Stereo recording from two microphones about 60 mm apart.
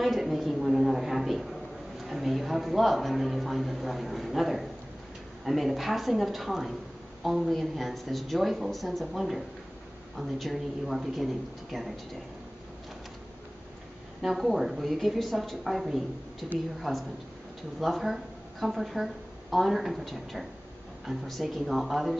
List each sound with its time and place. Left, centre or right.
0.0 s a sound: centre
2.0 s a man's voice: centre
14.2 s a man's voice: centre
16.9 s a man's voice: centre